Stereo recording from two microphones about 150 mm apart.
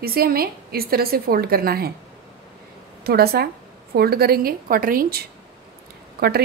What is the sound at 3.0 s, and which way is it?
A woman's voice, 90° right.